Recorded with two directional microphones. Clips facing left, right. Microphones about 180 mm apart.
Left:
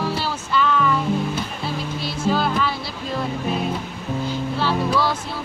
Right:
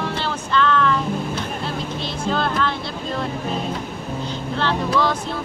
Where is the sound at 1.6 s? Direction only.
5° left (ahead or behind).